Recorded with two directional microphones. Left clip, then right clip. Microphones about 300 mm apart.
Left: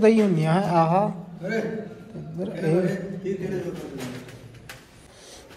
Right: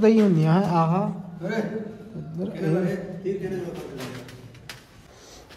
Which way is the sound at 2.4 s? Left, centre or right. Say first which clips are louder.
Left 2 dB; centre.